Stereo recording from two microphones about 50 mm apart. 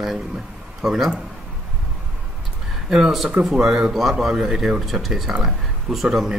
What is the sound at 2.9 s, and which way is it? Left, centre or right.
Speech, centre.